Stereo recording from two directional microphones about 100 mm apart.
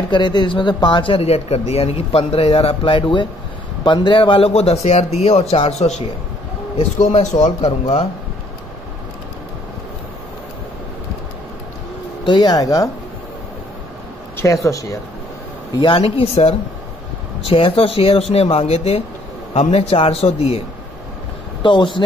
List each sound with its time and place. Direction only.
0.1 s a man's voice: 50° left (ahead or behind); by 6.0 s 90° left
7.1 s a man's voice: 90° left
12.3 s speech: 45° left (ahead or behind)
14.3 s speech: 30° left (ahead or behind)
15.7 s speech: 50° left (ahead or behind)
16.0 s a man's voice: 90° left
17.4 s a man's voice: 70° left (ahead or behind)
21.6 s speech: 55° left (ahead or behind)